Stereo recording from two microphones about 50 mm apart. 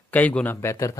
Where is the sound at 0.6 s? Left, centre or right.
Left.